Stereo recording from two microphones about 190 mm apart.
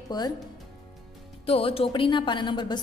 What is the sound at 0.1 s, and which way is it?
Speech, 20° left (ahead or behind).